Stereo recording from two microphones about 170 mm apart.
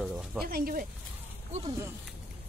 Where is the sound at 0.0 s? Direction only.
5° right (ahead or behind).